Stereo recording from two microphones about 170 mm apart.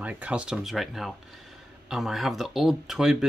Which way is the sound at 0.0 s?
10° right (ahead or behind).